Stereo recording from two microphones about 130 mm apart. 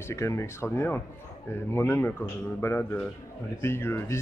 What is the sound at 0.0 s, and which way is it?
A man's voice, 20° left (ahead or behind).